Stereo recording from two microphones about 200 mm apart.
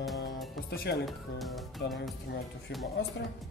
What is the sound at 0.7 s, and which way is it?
Speech, 55° left (ahead or behind).